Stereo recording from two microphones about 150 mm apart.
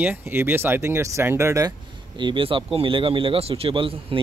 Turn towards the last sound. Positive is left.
turn(degrees=-35)  # may be behind; listen again after turning